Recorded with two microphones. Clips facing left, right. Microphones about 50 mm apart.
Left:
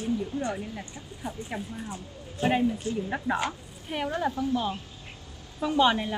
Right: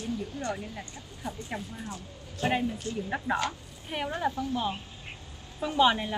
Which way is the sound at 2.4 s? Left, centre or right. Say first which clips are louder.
Left 4 dB; left.